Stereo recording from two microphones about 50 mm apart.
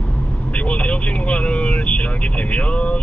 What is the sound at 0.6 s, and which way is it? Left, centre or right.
Speech, left.